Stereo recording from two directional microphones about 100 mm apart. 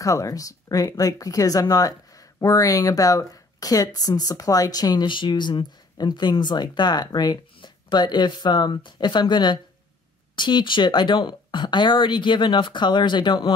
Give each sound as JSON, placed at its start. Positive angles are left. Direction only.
{"t": 0.0, "sound": "speech", "side_deg": 35}